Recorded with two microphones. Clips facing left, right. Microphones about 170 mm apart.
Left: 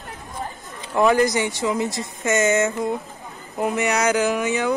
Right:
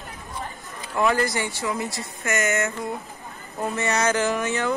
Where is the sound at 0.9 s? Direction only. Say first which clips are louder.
Left 5 dB; 15° left (ahead or behind).